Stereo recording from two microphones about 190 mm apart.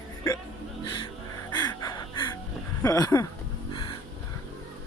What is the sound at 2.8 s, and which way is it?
Speech, 15° left (ahead or behind).